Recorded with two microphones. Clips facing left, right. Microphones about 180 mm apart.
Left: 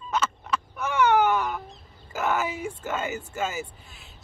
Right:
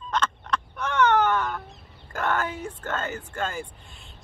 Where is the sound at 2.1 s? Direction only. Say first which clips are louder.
Left 1 dB; 5° left (ahead or behind).